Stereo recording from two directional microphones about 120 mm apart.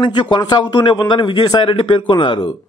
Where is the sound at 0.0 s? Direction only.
40° left (ahead or behind).